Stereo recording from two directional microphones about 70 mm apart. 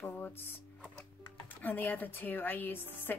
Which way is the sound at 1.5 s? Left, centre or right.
Left.